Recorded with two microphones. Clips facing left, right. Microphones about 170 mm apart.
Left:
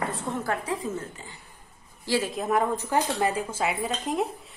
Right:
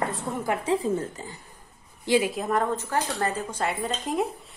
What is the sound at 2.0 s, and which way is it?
Speech, 20° right (ahead or behind).